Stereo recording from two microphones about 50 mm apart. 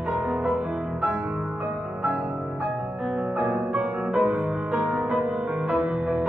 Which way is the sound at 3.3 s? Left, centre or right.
Centre.